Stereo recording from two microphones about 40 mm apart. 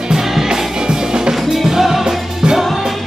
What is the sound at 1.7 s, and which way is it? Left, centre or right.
Music, centre.